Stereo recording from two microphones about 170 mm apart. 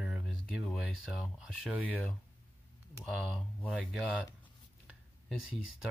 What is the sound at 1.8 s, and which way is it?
Music, 10° left (ahead or behind).